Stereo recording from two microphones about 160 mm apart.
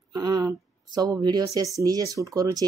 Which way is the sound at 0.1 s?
25° right (ahead or behind).